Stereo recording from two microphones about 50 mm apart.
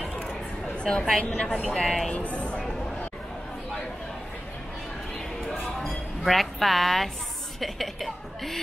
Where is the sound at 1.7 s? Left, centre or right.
Centre.